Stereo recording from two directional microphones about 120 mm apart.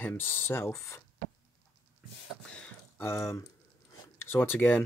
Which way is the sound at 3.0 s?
25° left (ahead or behind).